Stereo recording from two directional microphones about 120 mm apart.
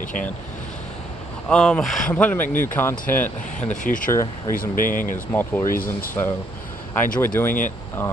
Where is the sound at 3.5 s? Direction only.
90° left.